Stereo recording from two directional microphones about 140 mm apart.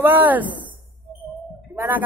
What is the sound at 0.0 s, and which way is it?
Speech, 15° right (ahead or behind).